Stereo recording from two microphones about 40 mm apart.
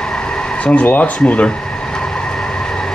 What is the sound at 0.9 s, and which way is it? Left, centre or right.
Speech, left.